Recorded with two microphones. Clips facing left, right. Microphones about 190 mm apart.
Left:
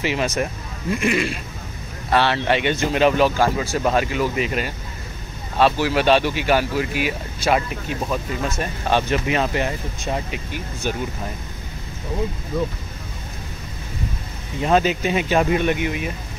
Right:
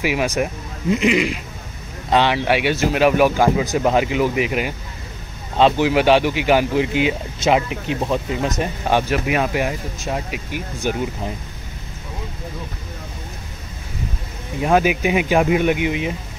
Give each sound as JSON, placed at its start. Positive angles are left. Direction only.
{"t": 0.0, "sound": "speech", "side_deg": -10}
{"t": 14.6, "sound": "speech", "side_deg": -10}